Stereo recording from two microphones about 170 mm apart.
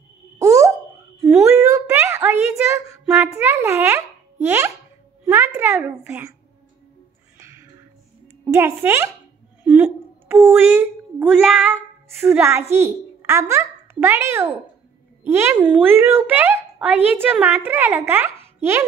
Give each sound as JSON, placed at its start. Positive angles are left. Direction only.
{"t": 0.4, "sound": "a sound", "side_deg": -20}
{"t": 2.5, "sound": "a child's voice", "side_deg": -15}
{"t": 7.3, "sound": "music", "side_deg": -15}
{"t": 8.5, "sound": "a woman's voice", "side_deg": -15}
{"t": 9.6, "sound": "a sound", "side_deg": -10}
{"t": 11.3, "sound": "a woman's voice", "side_deg": -5}